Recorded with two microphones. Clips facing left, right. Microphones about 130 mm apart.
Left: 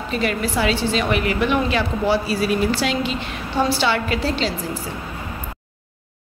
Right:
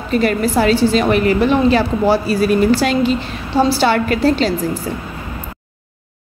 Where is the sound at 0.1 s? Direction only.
45° right (ahead or behind).